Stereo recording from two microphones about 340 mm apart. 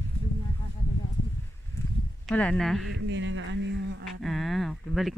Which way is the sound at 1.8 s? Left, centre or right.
Centre.